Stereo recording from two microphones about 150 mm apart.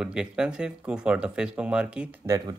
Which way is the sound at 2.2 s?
20° right (ahead or behind).